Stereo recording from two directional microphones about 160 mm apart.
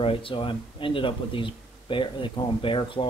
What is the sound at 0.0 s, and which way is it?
Speech, 35° left (ahead or behind).